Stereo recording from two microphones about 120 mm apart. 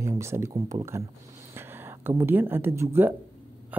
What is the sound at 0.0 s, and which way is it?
Speech, 25° right (ahead or behind).